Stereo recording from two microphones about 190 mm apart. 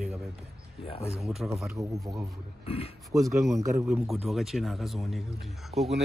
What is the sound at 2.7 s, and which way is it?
Speech, 30° left (ahead or behind).